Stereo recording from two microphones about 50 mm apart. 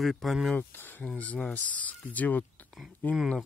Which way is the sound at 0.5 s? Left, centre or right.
Left.